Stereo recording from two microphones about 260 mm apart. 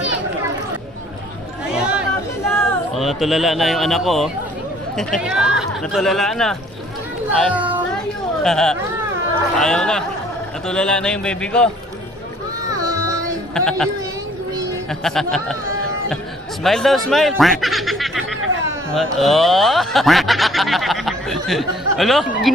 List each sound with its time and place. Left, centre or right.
1.8 s chatter: centre
2.5 s speech: centre
7.5 s music: centre
9.6 s speech: centre
13.6 s speech: centre
14.9 s speech: centre
16.6 s speech: centre